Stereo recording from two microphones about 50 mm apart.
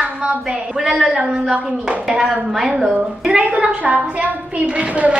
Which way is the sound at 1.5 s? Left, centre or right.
Right.